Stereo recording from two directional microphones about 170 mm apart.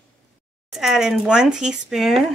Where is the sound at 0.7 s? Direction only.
Centre (ahead or behind).